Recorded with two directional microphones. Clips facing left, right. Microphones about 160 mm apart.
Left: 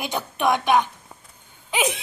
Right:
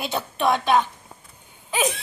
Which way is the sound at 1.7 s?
20° left (ahead or behind).